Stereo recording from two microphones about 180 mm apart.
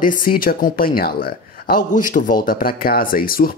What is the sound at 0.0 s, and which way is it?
Speech, 50° left (ahead or behind).